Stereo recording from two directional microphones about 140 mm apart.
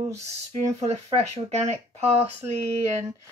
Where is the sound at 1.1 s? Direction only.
50° right (ahead or behind).